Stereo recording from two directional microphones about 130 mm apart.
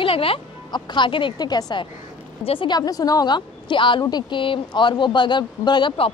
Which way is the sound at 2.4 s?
45° left (ahead or behind).